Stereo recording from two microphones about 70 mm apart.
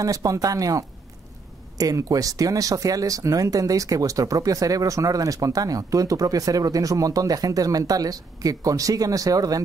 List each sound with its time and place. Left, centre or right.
0.0 s speech: right